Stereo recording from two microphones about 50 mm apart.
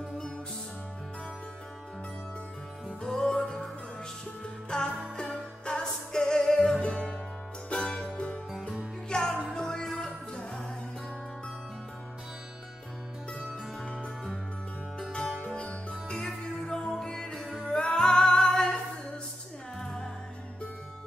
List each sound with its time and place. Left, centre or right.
3.0 s music: centre
4.6 s jingle bell: centre
5.3 s music: centre
6.4 s music: centre
8.1 s music: left
9.1 s music: centre
15.0 s music: centre
15.4 s music: left
16.2 s music: centre
19.8 s music: centre